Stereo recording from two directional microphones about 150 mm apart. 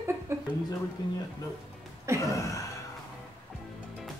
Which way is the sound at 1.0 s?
30° left (ahead or behind).